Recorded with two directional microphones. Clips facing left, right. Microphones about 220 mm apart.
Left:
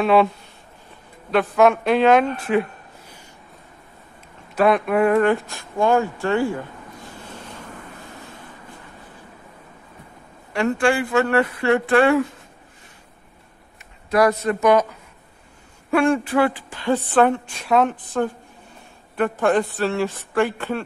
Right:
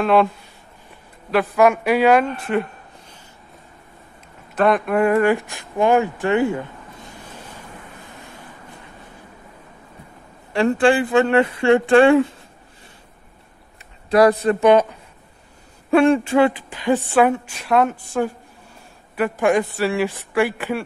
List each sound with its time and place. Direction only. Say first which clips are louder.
0.0 s a woman's voice: even; centre (ahead or behind)
1.3 s a woman's voice: even; centre (ahead or behind)
2.4 s a sound: left 1 dB; centre (ahead or behind)
4.6 s a woman's voice: even; centre (ahead or behind)
5.5 s a woman's voice: right 2 dB; 15° right (ahead or behind)
10.5 s speech: right 3 dB; 30° right (ahead or behind)
14.1 s speech: right 4 dB; 30° right (ahead or behind)
15.9 s a woman's voice: right 4 dB; 25° right (ahead or behind)